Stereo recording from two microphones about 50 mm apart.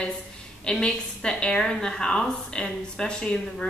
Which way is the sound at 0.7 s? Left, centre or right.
Centre.